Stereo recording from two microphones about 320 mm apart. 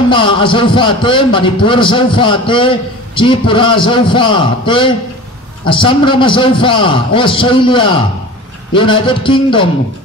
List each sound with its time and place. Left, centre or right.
0.1 s a man's voice: centre